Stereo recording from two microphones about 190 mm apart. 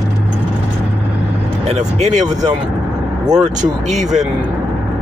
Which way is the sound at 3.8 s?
40° right (ahead or behind).